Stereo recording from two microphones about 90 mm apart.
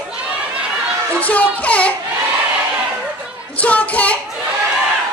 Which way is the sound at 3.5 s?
15° left (ahead or behind).